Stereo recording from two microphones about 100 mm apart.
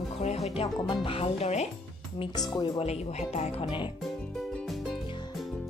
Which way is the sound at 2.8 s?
90° left.